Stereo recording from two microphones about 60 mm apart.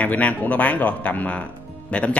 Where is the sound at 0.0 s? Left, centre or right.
Left.